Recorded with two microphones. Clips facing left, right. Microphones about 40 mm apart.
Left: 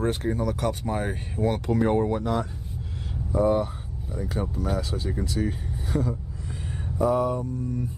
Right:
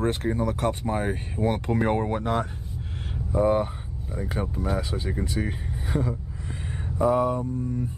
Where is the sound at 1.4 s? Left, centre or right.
Right.